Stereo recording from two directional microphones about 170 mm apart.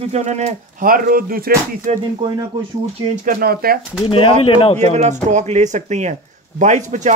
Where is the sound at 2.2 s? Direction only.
25° right (ahead or behind).